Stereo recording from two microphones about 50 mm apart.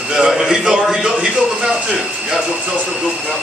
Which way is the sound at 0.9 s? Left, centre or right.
Centre.